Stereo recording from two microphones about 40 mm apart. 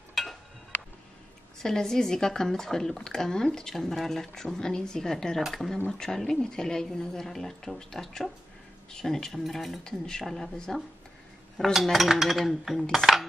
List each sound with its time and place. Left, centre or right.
0.1 s a sound: centre
1.6 s speech: centre
9.8 s speech: centre
11.7 s speech: centre
12.9 s cutlery: centre